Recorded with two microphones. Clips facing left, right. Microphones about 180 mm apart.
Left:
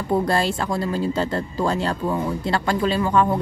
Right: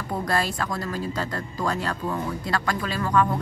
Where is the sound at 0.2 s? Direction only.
30° left (ahead or behind).